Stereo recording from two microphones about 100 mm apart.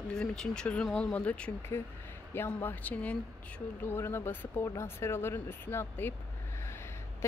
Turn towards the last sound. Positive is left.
turn(degrees=20)  # may be behind; listen again after turning